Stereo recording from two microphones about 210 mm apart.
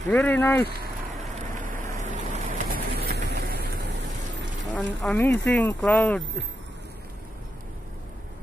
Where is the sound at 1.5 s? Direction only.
40° right (ahead or behind).